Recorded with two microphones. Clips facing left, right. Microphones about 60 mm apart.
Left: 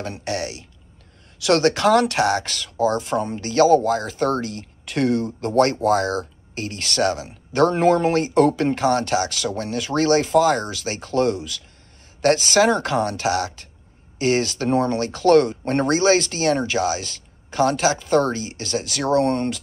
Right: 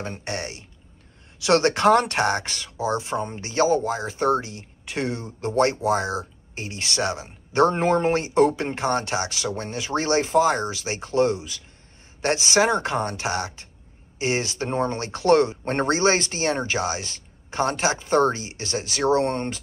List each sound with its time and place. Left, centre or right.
0.2 s speech: right
5.0 s speech: left
5.9 s speech: centre